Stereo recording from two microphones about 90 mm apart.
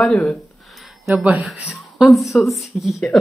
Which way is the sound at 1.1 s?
15° right (ahead or behind).